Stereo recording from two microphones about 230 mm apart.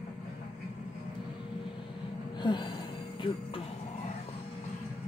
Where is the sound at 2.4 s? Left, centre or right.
Centre.